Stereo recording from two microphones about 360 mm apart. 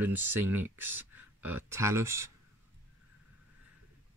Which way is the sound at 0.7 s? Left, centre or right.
Centre.